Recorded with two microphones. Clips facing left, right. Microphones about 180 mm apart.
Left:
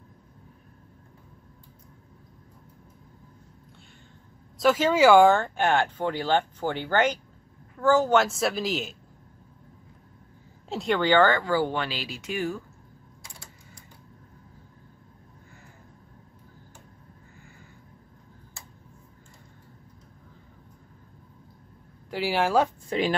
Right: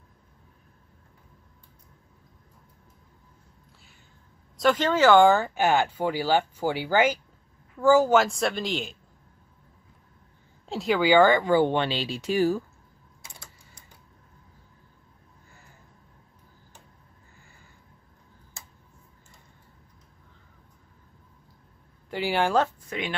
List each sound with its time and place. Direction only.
4.6 s speech: 5° left (ahead or behind)
5.3 s speech: 5° right (ahead or behind)
10.7 s speech: centre (ahead or behind); by 12.6 s 35° right (ahead or behind)
22.1 s speech: centre (ahead or behind)
22.8 s speech: 35° left (ahead or behind)